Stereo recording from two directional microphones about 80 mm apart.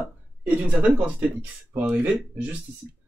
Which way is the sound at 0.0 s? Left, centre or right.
Right.